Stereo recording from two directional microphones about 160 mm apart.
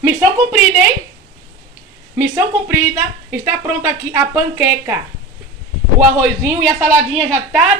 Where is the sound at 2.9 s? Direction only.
15° right (ahead or behind).